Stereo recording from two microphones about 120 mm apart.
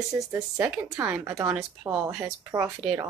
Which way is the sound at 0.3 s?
25° right (ahead or behind).